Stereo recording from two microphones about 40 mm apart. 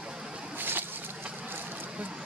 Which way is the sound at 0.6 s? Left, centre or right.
Right.